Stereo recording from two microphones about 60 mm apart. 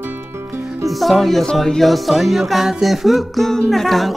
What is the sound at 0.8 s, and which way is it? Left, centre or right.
Music, centre.